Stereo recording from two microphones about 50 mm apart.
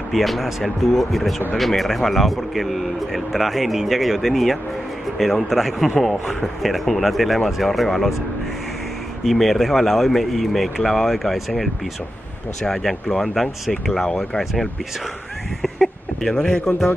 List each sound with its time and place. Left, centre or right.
0.1 s speech: centre
9.2 s speech: centre
15.6 s a sound: centre